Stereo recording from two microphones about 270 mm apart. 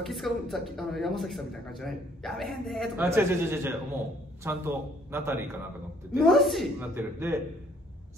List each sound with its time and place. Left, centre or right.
0.0 s a man's voice: centre